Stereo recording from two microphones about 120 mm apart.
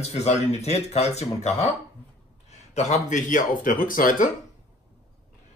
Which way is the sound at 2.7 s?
75° left (ahead or behind).